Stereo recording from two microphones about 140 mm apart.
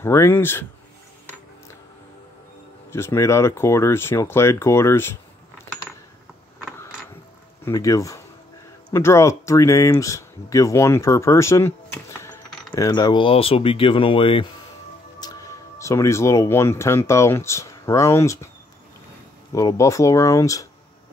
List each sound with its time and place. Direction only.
0.0 s speech: 15° left (ahead or behind)
2.9 s speech: 20° left (ahead or behind)
7.6 s speech: 20° left (ahead or behind); by 14.5 s 40° left (ahead or behind)
15.1 s speech: 25° left (ahead or behind)
19.5 s speech: 25° left (ahead or behind)